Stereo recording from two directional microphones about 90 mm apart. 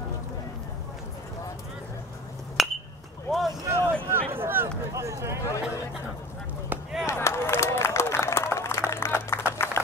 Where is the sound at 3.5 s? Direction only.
40° right (ahead or behind).